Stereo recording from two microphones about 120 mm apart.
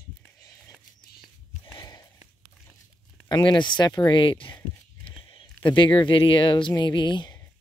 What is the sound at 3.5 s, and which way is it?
Speech, 40° left (ahead or behind).